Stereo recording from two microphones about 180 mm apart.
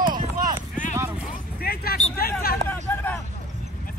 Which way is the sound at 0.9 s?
10° right (ahead or behind).